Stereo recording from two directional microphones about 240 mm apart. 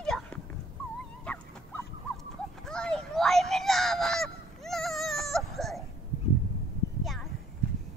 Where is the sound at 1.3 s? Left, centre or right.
Centre.